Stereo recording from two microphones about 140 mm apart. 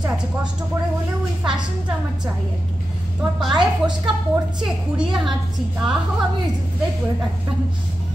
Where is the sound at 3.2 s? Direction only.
5° right (ahead or behind).